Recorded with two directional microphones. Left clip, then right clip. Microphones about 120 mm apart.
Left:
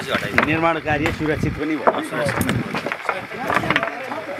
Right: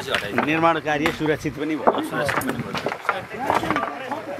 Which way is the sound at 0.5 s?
25° right (ahead or behind).